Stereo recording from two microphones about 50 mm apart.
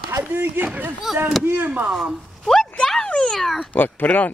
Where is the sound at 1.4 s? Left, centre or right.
Right.